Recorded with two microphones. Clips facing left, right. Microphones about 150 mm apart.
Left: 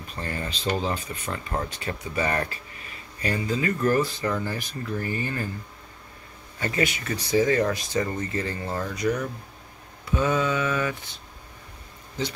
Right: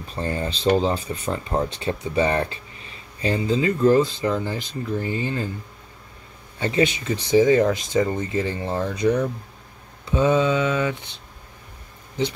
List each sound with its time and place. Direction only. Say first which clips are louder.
0.0 s speech: right 6 dB; 30° right (ahead or behind)
6.6 s speech: right 5 dB; 25° right (ahead or behind)